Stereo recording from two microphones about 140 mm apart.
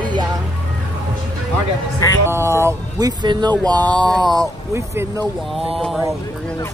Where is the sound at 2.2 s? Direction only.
20° right (ahead or behind).